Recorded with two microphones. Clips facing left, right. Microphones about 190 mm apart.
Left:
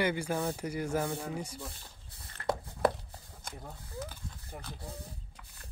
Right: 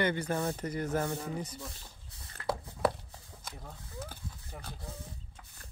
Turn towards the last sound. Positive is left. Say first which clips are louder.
# left 1 dB
turn(degrees=10)  # may be behind; listen again after turning